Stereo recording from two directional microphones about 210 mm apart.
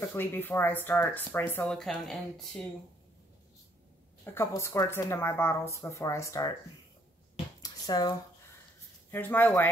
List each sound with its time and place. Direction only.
0.1 s speech: 10° left (ahead or behind)
4.2 s speech: 10° left (ahead or behind)
7.6 s a sound: 20° left (ahead or behind)
9.1 s speech: 10° left (ahead or behind)